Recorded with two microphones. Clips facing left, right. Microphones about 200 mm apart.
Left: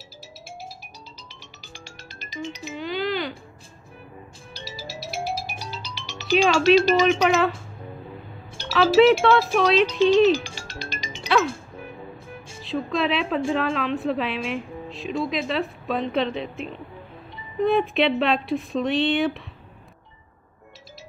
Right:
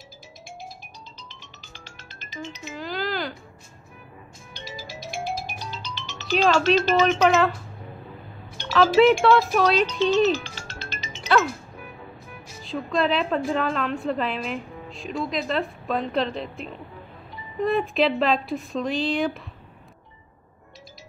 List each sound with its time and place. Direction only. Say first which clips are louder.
1.3 s music: left 2 dB; 10° left (ahead or behind)
2.7 s speech: left 2 dB; centre (ahead or behind)
5.2 s music: even; 10° left (ahead or behind)
6.9 s speech: even; 10° left (ahead or behind)
8.6 s speech: left 1 dB; 5° left (ahead or behind)
10.7 s music: left 3 dB; 10° left (ahead or behind)
11.4 s music: left 2 dB; 30° left (ahead or behind)
12.6 s speech: even; centre (ahead or behind)